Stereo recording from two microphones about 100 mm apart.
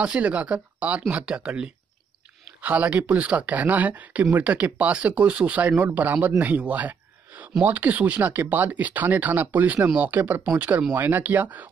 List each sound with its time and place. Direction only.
0.0 s speech: 10° right (ahead or behind)